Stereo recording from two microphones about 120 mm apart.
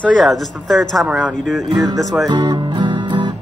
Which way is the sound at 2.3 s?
40° right (ahead or behind).